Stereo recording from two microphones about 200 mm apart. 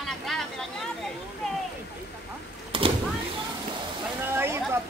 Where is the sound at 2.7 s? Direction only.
25° right (ahead or behind).